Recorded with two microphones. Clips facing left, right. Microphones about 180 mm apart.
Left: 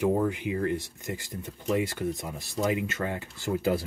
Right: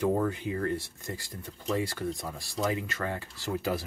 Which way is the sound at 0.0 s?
10° left (ahead or behind).